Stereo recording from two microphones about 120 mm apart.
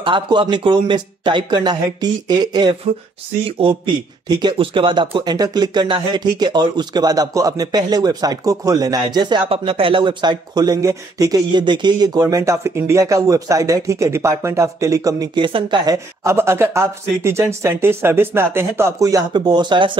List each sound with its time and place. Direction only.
0.0 s speech: 45° right (ahead or behind)
3.4 s a man's voice: 50° right (ahead or behind)
4.3 s speech: 35° right (ahead or behind)
16.3 s speech: 20° right (ahead or behind); by 19.9 s 40° right (ahead or behind)